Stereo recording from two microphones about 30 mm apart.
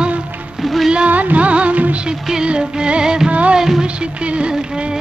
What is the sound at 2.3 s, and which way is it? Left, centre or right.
Music, right.